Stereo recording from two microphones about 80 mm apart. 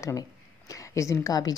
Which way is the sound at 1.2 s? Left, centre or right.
Left.